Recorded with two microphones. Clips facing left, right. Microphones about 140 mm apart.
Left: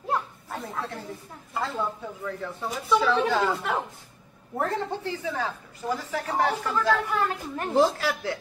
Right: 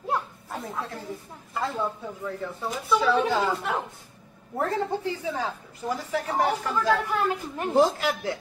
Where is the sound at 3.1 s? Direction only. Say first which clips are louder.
Even; 10° right (ahead or behind).